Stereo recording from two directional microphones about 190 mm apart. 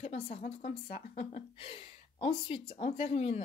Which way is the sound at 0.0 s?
35° left (ahead or behind).